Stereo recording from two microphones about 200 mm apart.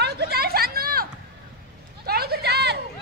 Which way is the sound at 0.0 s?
55° right (ahead or behind).